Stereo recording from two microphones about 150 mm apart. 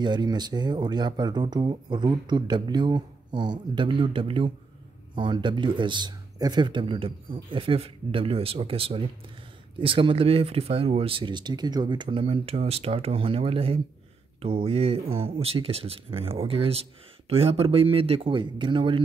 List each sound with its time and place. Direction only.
0.0 s speech: 30° right (ahead or behind)